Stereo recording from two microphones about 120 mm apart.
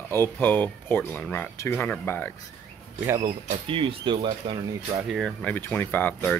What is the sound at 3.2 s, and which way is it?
Speech, 45° right (ahead or behind).